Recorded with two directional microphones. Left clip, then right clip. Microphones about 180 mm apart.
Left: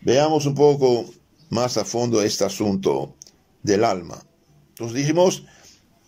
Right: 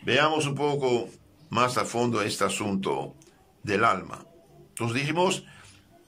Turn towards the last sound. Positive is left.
turn(degrees=35)  # may be behind; listen again after turning